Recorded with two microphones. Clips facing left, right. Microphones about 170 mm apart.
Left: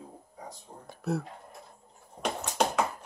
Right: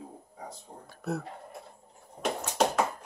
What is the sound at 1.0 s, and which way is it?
Speech, centre (ahead or behind).